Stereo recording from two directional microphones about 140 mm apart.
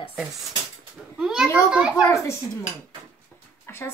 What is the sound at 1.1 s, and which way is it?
Speech, 5° right (ahead or behind).